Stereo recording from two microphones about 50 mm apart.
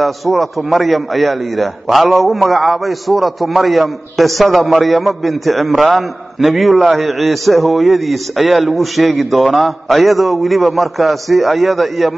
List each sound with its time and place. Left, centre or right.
0.0 s a man's voice: centre